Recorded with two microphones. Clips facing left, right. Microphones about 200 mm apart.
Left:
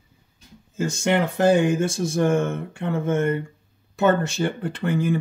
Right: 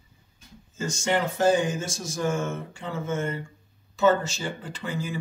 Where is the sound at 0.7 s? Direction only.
60° left (ahead or behind).